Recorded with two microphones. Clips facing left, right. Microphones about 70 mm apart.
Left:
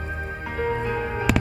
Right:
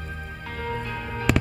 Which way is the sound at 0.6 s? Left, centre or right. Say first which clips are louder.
Left 6 dB; left.